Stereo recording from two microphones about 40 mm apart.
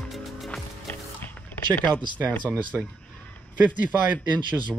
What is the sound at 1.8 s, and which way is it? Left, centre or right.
Speech, left.